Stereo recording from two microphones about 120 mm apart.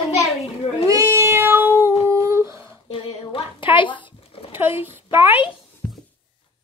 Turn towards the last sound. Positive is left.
turn(degrees=-15)  # may be behind; listen again after turning